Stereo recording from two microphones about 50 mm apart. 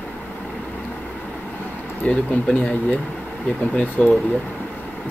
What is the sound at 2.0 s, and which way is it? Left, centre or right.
Speech, left.